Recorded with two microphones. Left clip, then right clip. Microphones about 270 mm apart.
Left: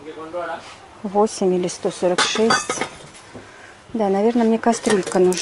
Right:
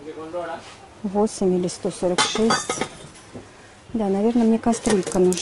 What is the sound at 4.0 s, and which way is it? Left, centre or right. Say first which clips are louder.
Speech: left 3 dB; left.